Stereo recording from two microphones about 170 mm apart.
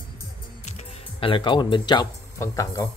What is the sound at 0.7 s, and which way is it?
Speech, 35° left (ahead or behind).